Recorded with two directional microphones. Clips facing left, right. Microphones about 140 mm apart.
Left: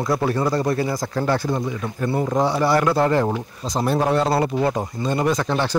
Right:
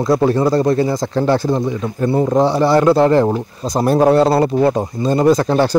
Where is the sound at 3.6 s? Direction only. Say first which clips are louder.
Right 8 dB; 40° right (ahead or behind).